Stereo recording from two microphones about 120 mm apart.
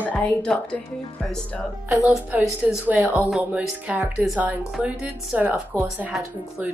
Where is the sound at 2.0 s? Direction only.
15° right (ahead or behind).